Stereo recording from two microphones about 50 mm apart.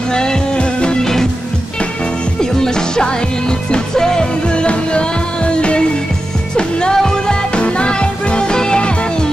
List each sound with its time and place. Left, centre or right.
0.1 s music: centre
2.6 s music: centre